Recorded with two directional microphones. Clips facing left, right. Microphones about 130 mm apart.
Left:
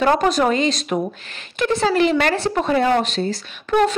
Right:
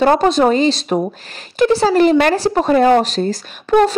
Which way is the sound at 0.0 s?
30° right (ahead or behind).